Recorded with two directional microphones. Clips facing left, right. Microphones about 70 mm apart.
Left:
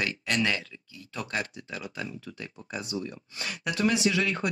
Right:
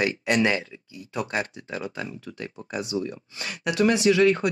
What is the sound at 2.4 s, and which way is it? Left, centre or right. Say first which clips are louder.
Speech: right 5 dB; right.